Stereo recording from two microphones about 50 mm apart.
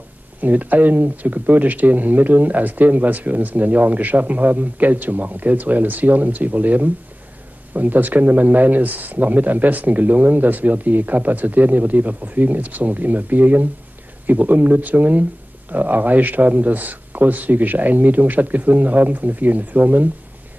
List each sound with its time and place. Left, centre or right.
0.4 s speech: right